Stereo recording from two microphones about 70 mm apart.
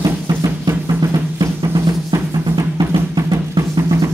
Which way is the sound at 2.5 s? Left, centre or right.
Right.